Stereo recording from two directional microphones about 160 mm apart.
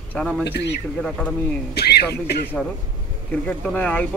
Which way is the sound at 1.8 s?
90° left.